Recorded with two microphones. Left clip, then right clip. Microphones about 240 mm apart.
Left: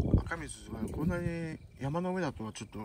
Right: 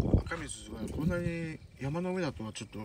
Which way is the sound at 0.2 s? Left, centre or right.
Centre.